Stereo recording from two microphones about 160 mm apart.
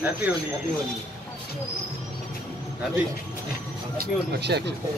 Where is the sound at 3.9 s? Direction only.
75° right (ahead or behind).